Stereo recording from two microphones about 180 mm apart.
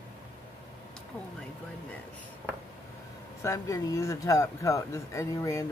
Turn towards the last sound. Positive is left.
turn(degrees=15)  # may be behind; listen again after turning